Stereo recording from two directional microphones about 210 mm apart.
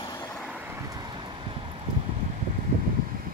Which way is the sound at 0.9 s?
20° right (ahead or behind).